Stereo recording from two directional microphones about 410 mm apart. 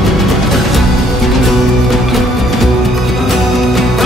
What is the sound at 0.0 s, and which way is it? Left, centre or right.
Music, centre.